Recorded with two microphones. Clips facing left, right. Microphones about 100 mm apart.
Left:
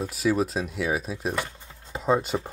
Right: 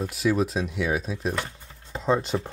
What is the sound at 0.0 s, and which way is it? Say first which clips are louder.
Speech: even; centre (ahead or behind).